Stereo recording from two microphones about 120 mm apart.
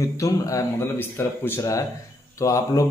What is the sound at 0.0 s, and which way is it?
A man's voice, 25° left (ahead or behind).